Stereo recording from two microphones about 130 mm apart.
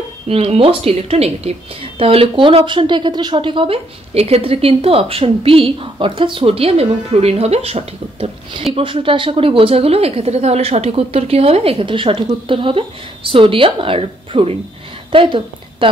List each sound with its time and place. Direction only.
0.3 s a woman's voice: 50° right (ahead or behind)